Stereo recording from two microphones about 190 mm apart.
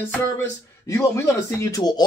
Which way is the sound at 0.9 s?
15° left (ahead or behind).